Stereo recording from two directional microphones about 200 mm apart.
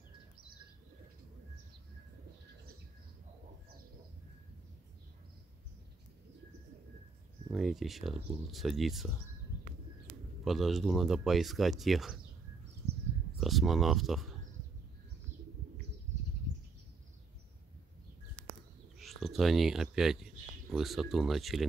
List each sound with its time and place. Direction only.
7.5 s speech: centre (ahead or behind)
10.4 s speech: centre (ahead or behind)
12.8 s a sound: 30° right (ahead or behind)
13.4 s speech: centre (ahead or behind)
18.9 s speech: centre (ahead or behind)